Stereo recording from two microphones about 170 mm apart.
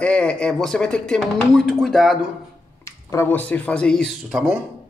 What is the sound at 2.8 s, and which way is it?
Speech, 15° left (ahead or behind).